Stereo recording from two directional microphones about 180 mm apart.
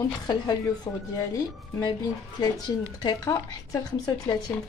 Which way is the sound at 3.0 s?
20° left (ahead or behind).